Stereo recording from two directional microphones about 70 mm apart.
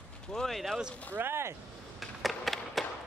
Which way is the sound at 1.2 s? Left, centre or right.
Right.